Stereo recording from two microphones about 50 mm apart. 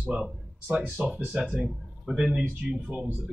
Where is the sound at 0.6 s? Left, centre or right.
Right.